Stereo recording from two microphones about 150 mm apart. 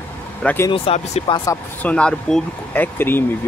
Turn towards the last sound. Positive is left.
turn(degrees=15)  # may be behind; listen again after turning